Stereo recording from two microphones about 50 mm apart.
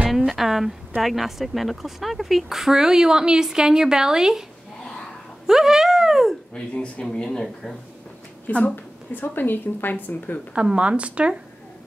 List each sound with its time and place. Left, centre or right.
0.3 s speech: centre
5.5 s speech: centre
6.5 s speech: left
8.5 s a woman's voice: left
10.5 s speech: right